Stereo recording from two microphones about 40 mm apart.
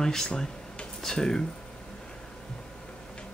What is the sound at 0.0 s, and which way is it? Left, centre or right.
Speech, centre.